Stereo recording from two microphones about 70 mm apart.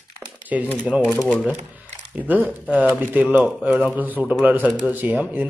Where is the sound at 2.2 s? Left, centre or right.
Right.